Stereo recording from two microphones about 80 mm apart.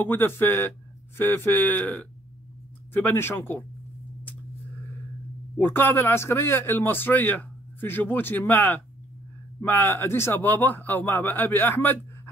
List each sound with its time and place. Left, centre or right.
0.0 s speech: left
5.6 s speech: left